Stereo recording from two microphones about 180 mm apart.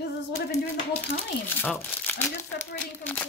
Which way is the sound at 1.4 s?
5° left (ahead or behind).